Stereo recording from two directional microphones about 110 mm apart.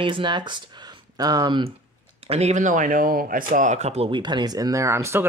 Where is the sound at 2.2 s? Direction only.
75° right (ahead or behind).